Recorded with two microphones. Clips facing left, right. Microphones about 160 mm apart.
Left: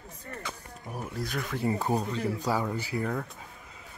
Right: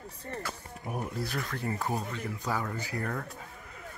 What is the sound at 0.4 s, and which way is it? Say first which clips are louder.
Speech: right 1 dB; 5° right (ahead or behind).